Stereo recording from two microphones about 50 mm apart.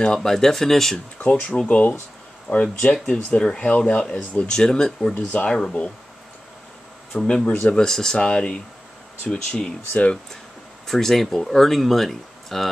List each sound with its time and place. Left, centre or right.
0.0 s speech: centre
1.1 s speech: left
2.5 s speech: centre
7.2 s speech: centre
10.9 s speech: centre